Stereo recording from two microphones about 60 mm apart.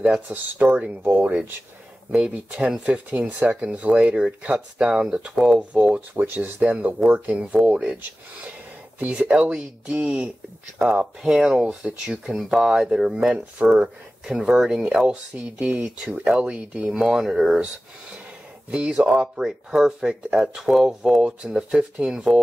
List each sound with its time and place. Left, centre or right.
0.3 s speech: right
2.2 s speech: centre
6.1 s speech: right; by 8.0 s centre
9.0 s speech: right
11.2 s speech: centre
13.1 s speech: centre
15.3 s speech: right
18.7 s speech: right